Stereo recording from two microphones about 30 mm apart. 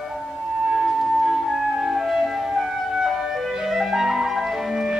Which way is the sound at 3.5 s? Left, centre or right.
Centre.